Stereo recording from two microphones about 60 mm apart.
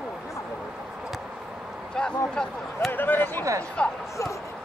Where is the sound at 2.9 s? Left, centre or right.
Left.